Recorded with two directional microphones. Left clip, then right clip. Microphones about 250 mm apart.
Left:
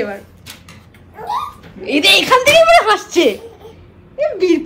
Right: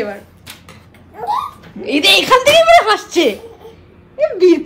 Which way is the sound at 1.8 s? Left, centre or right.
Centre.